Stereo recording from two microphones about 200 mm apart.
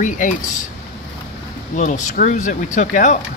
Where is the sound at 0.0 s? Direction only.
40° left (ahead or behind).